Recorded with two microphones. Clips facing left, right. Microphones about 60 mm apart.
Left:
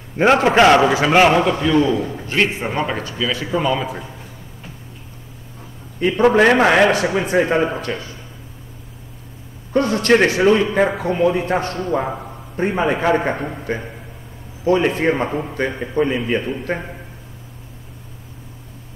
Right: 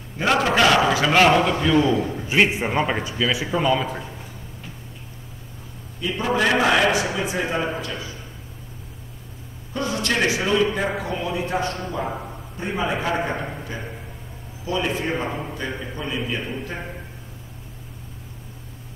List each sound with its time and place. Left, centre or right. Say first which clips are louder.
0.2 s a man's voice: left 6 dB; left
1.2 s a man's voice: left 1 dB; centre
1.5 s a man's voice: left 3 dB; centre
3.4 s a man's voice: left 3 dB; centre
5.9 s a man's voice: left 9 dB; left
9.7 s a man's voice: left 10 dB; left
16.7 s a man's voice: left 8 dB; left